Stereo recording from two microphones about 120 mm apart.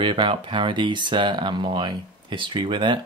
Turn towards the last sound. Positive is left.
turn(degrees=-40)  # may be behind; listen again after turning